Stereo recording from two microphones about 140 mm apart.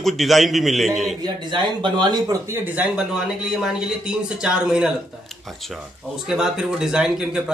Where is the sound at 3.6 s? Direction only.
5° right (ahead or behind).